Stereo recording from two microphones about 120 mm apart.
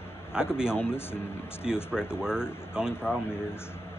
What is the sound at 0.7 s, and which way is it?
Speech, 20° left (ahead or behind).